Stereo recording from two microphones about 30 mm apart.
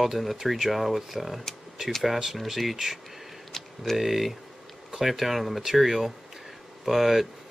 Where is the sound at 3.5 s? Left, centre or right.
Centre.